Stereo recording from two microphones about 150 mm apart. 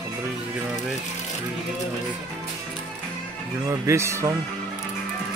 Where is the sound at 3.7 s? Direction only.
20° right (ahead or behind).